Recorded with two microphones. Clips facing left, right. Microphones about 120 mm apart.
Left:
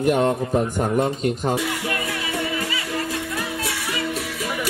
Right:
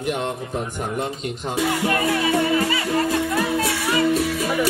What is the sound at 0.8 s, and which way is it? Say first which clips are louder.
Speech: left 5 dB; 50° left (ahead or behind).